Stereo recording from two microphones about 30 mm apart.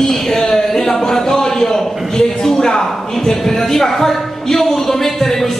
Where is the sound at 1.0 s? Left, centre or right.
Centre.